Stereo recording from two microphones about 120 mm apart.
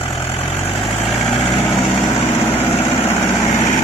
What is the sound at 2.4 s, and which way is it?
Vehicle, 45° left (ahead or behind).